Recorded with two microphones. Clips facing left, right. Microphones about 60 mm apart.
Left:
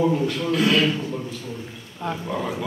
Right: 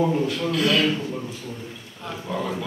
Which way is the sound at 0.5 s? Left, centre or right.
Left.